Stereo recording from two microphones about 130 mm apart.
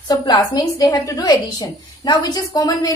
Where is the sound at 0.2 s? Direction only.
35° left (ahead or behind).